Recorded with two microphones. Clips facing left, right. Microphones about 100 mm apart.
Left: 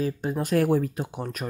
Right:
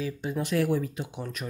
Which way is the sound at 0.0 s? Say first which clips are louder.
Left 4 dB; 45° left (ahead or behind).